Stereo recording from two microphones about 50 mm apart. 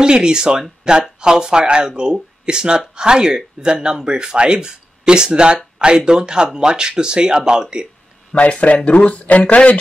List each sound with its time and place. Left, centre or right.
0.0 s speech: centre
8.3 s speech: left